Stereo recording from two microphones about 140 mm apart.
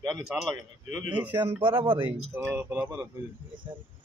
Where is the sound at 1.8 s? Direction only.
40° right (ahead or behind).